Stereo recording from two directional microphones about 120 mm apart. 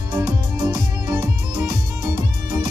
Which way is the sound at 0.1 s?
35° right (ahead or behind).